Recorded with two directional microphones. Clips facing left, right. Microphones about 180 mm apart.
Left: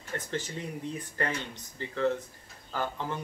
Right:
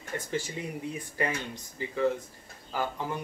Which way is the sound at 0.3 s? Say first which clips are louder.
Right 2 dB; 10° right (ahead or behind).